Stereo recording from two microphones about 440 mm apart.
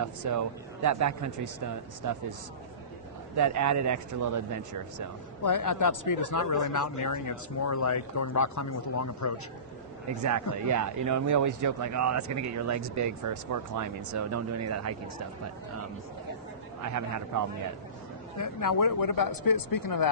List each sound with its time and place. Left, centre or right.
0.0 s speech: right
3.3 s speech: right
5.4 s speech: left
10.7 s speech: right
16.8 s speech: right
18.4 s speech: left